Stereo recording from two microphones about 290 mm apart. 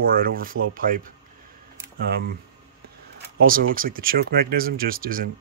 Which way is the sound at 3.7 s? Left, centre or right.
Right.